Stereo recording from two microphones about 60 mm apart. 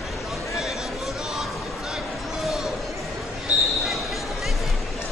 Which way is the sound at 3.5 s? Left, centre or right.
Right.